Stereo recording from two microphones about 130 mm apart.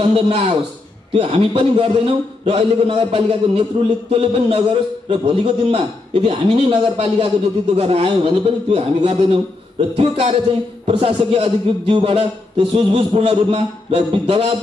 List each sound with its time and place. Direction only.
0.0 s a man's voice: 40° right (ahead or behind)